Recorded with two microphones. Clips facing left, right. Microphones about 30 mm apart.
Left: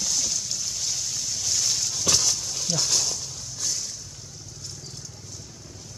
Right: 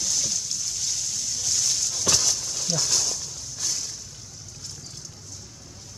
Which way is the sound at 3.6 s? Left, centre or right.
Centre.